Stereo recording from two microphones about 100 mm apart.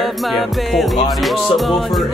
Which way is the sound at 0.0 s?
Centre (ahead or behind).